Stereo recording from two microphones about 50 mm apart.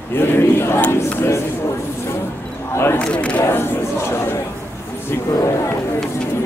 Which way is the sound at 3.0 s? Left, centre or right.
Left.